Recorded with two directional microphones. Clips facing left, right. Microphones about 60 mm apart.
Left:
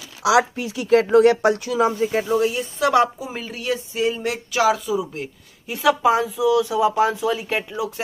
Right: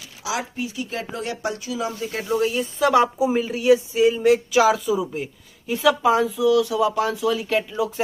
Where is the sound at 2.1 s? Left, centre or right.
Centre.